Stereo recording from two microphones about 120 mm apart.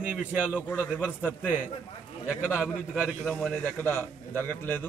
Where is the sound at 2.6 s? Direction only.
5° right (ahead or behind).